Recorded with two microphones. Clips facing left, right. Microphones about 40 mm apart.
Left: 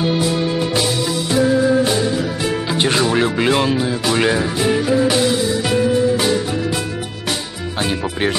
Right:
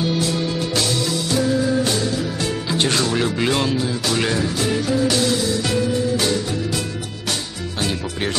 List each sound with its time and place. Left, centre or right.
0.0 s music: centre